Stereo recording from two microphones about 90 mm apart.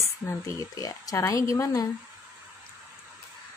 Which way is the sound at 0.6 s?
40° left (ahead or behind).